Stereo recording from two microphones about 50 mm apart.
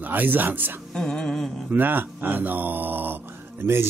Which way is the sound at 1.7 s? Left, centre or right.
Right.